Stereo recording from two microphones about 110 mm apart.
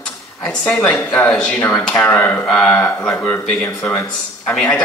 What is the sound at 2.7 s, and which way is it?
Speech, 20° left (ahead or behind).